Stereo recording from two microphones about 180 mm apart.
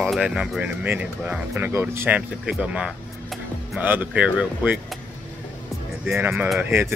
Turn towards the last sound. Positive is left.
turn(degrees=0)  # may be behind; listen again after turning